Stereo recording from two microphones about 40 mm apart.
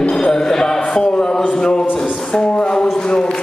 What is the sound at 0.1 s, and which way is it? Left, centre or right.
Music, centre.